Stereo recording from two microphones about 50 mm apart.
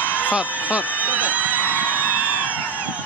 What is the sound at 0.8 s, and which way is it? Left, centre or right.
Speech, left.